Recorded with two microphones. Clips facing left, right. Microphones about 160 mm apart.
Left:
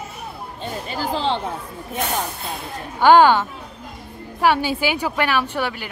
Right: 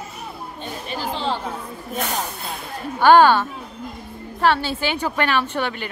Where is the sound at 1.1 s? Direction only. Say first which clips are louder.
Left 3 dB; 30° left (ahead or behind).